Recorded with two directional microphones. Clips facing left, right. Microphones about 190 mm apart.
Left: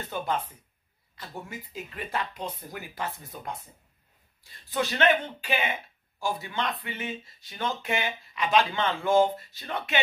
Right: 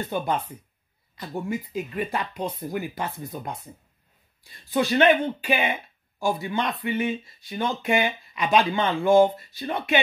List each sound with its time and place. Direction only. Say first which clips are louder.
1.1 s speech: right 10 dB; 15° right (ahead or behind)
4.6 s speech: right 5 dB; 10° right (ahead or behind)